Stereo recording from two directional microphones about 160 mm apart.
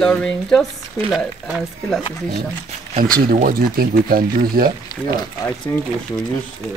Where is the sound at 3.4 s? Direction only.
65° right (ahead or behind).